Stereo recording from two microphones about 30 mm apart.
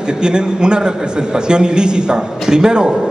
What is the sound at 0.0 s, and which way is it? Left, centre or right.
A man's voice, right.